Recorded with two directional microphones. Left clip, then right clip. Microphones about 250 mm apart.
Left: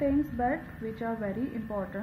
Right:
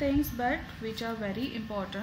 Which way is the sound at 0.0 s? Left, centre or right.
Centre.